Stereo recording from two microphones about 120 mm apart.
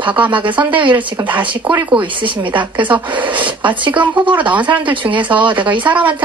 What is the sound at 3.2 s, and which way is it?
A woman's voice, 40° right (ahead or behind).